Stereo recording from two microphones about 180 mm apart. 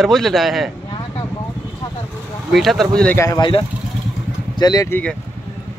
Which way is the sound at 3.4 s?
25° left (ahead or behind).